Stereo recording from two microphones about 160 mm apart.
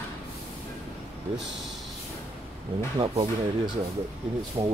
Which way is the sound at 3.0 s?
35° right (ahead or behind).